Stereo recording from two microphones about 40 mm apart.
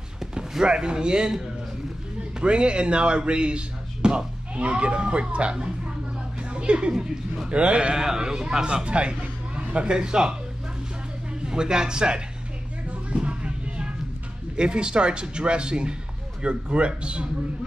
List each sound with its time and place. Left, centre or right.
0.2 s speech: centre
2.4 s a woman's voice: right
8.0 s a man's voice: centre
8.6 s speech: right
11.4 s speech: centre
12.8 s music: right
14.6 s speech: right